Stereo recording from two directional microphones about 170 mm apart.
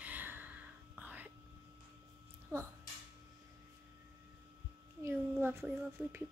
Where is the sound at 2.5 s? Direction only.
15° right (ahead or behind).